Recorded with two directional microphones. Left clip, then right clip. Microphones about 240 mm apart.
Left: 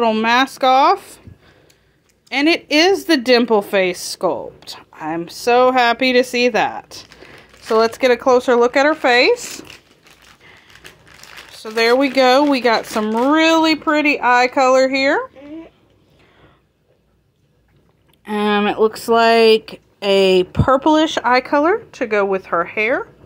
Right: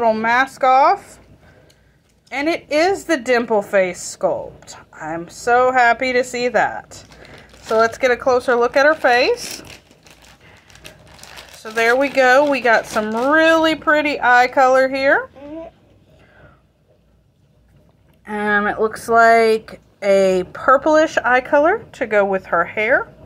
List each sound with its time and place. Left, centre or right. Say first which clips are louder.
0.0 s a woman's voice: left 1 dB; left
2.2 s a woman's voice: left 4 dB; left
11.6 s speech: left 1 dB; left
18.2 s speech: left 1 dB; left
21.2 s speech: right 1 dB; centre
22.4 s speech: right 1 dB; left